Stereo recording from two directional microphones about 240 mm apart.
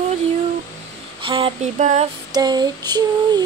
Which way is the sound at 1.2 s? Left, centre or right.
Right.